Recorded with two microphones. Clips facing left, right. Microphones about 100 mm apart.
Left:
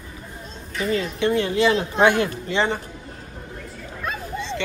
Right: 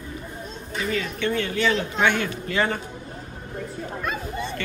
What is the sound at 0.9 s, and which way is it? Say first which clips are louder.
A man's voice: left 5 dB; 30° left (ahead or behind).